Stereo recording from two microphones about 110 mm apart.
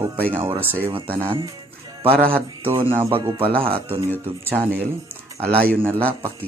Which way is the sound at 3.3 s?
55° right (ahead or behind).